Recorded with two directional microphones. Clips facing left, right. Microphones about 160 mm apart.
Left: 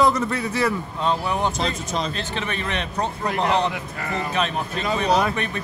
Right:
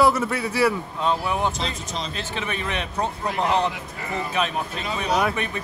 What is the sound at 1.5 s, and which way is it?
Speech, 50° left (ahead or behind).